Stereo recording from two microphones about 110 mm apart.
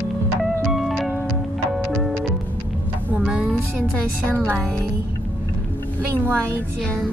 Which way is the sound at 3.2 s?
10° right (ahead or behind).